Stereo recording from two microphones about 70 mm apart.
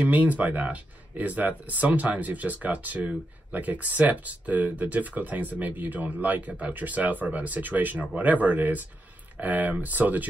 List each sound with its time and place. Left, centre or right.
0.0 s speech: right